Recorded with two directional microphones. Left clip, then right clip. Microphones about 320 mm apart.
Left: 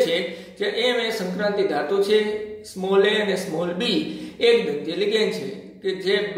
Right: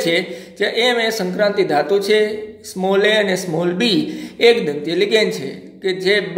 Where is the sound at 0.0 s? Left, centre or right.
Right.